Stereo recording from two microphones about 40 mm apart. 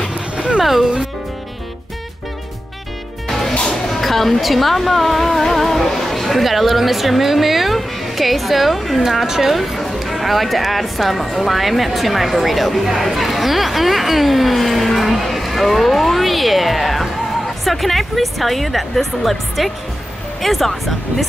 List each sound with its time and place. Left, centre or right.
0.6 s speech: centre
3.3 s music: centre
4.0 s speech: centre